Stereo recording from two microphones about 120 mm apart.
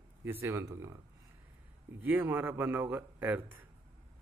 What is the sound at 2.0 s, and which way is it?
Speech, 15° right (ahead or behind).